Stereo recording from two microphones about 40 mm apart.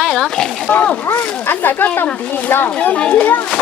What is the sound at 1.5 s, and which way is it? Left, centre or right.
Speech, left.